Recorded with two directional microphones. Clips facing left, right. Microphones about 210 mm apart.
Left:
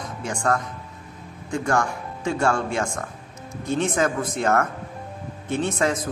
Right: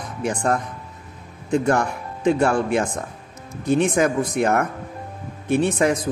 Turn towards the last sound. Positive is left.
turn(degrees=-15)  # may be behind; listen again after turning